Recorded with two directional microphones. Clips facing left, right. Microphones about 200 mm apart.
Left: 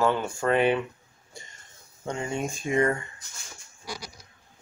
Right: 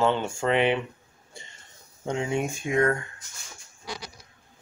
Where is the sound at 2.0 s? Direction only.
15° right (ahead or behind).